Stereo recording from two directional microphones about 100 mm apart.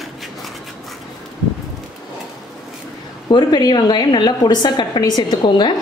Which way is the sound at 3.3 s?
45° left (ahead or behind).